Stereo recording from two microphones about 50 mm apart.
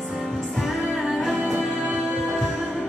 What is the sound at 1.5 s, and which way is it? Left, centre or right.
Music, right.